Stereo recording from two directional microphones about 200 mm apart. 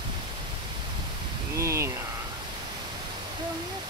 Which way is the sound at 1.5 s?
15° right (ahead or behind).